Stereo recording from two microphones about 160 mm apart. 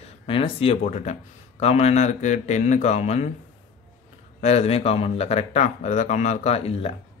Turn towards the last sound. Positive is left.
turn(degrees=40)  # may be behind; listen again after turning